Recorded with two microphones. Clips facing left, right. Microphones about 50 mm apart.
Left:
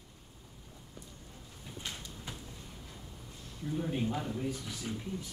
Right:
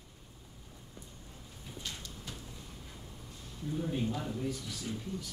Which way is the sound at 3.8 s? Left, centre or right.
Left.